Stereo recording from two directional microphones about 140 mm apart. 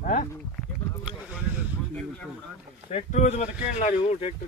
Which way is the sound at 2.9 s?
60° left (ahead or behind).